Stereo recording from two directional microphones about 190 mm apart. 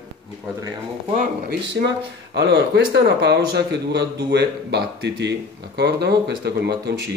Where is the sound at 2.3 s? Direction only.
60° right (ahead or behind).